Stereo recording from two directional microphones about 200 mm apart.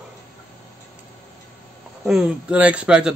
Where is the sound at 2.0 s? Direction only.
5° right (ahead or behind).